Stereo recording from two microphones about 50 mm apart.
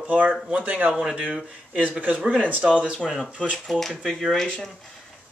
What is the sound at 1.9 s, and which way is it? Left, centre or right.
Speech, right.